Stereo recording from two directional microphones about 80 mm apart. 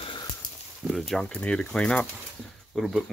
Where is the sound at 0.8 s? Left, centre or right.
Centre.